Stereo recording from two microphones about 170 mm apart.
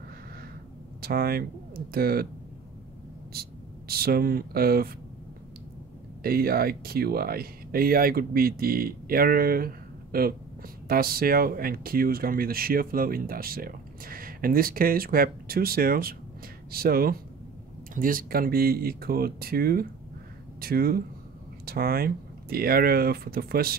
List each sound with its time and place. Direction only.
1.0 s speech: 65° right (ahead or behind)
3.3 s speech: 65° right (ahead or behind)
6.2 s speech: 60° right (ahead or behind)